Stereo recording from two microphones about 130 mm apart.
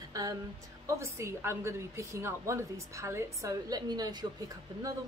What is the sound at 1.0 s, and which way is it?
A woman's voice, 20° right (ahead or behind).